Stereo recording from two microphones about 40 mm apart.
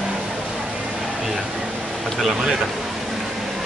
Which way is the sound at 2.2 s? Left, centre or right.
Centre.